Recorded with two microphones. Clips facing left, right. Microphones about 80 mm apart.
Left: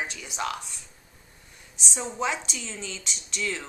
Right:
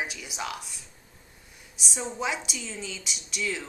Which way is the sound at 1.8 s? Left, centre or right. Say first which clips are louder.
Left 2 dB; centre.